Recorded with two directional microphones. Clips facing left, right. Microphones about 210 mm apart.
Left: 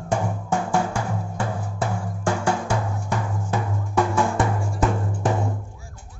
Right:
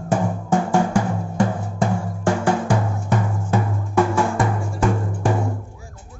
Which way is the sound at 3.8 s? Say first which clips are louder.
Right 2 dB; centre (ahead or behind).